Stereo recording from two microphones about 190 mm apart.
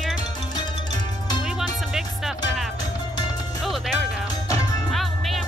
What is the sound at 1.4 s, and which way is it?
Music, centre (ahead or behind).